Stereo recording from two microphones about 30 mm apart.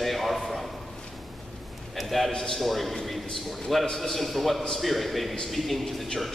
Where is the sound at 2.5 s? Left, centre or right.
Centre.